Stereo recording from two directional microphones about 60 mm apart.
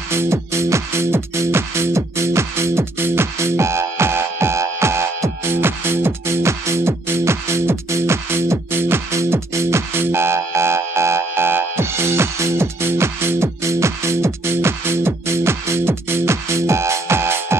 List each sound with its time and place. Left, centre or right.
0.1 s music: right